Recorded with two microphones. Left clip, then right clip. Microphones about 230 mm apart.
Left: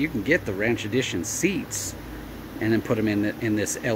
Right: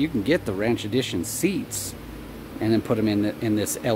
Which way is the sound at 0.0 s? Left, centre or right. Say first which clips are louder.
Even; centre.